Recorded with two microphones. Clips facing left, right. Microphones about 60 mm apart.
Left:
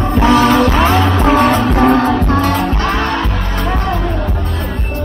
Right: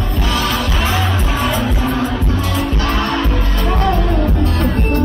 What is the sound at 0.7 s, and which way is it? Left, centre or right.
Music, left.